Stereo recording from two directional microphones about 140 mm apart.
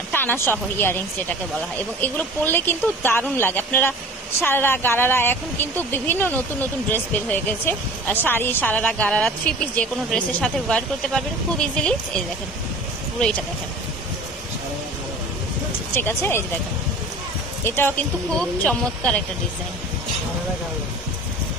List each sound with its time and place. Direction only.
0.1 s speech: 15° left (ahead or behind)
15.9 s speech: 15° left (ahead or behind)
17.6 s speech: 15° left (ahead or behind)